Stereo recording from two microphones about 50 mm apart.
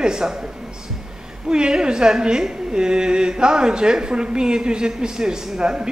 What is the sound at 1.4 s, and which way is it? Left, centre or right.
A woman's voice, centre.